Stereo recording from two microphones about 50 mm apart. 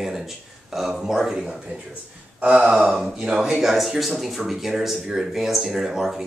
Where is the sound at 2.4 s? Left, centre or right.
Right.